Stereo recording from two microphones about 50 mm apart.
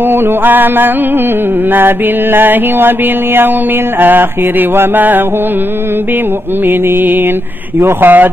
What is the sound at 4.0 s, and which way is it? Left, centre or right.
Mantra, right.